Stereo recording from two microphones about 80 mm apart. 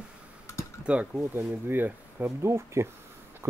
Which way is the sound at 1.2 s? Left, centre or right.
Right.